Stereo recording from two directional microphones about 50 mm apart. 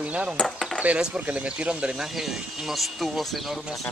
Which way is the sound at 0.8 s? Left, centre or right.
Right.